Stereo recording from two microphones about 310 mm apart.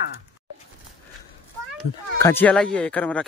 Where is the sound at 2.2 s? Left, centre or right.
Centre.